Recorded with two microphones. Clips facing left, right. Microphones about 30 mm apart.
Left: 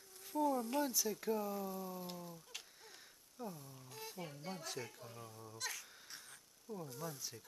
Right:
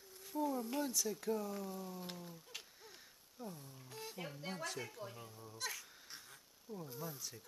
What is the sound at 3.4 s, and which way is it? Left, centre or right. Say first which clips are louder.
Speech: left 2 dB; centre.